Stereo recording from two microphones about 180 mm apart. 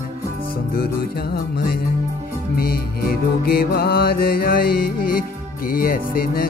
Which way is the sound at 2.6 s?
55° left (ahead or behind).